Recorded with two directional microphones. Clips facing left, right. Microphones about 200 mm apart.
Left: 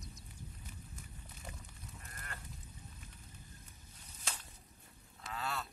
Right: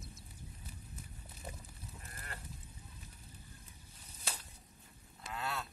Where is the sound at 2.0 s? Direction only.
30° right (ahead or behind).